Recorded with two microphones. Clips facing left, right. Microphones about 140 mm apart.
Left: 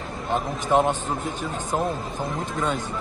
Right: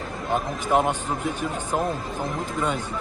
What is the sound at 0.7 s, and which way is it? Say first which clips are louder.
Speech: left 1 dB; 10° right (ahead or behind).